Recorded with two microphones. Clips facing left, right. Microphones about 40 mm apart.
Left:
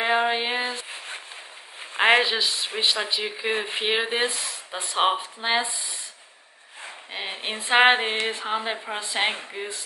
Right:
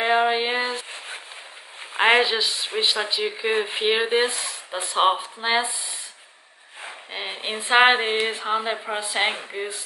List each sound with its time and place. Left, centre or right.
0.0 s a sound: centre
1.8 s speech: centre
6.8 s speech: centre